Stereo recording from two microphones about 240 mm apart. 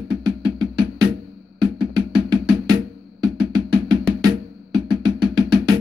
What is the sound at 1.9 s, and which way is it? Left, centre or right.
Music, centre.